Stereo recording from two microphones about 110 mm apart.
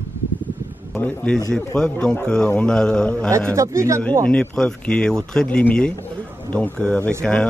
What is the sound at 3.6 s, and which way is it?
Speech, 30° right (ahead or behind).